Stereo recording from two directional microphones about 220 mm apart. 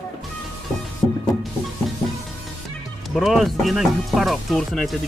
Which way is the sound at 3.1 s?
Centre (ahead or behind).